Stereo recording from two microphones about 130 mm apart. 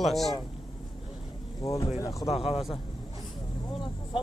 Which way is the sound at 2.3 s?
50° left (ahead or behind).